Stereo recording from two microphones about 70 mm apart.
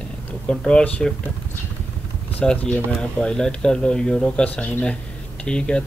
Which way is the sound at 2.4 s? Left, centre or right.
Centre.